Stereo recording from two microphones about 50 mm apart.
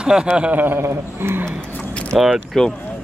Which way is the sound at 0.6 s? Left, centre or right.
Right.